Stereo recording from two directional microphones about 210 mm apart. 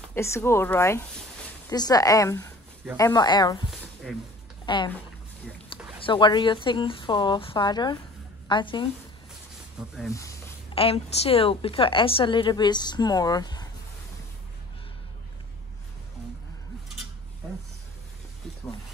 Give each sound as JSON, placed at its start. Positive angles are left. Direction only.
{"t": 0.1, "sound": "a woman's voice", "side_deg": 10}
{"t": 4.6, "sound": "a woman's voice", "side_deg": 20}
{"t": 5.9, "sound": "a woman's voice", "side_deg": 25}
{"t": 10.1, "sound": "a sound", "side_deg": 15}
{"t": 10.7, "sound": "a woman's voice", "side_deg": 25}